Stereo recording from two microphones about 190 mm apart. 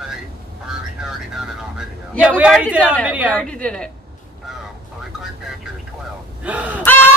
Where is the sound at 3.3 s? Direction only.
5° left (ahead or behind).